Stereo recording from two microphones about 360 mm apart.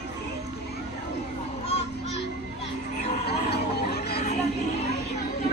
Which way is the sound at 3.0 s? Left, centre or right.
Left.